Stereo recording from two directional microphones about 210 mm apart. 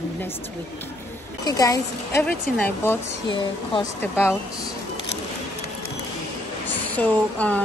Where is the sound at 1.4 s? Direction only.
15° left (ahead or behind).